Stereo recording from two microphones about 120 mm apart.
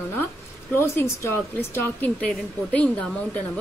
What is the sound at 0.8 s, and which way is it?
A woman's voice, 20° left (ahead or behind).